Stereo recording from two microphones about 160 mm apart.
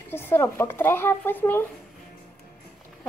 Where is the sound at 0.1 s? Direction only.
15° left (ahead or behind).